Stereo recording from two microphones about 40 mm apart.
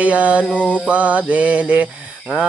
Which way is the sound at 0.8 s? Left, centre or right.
Right.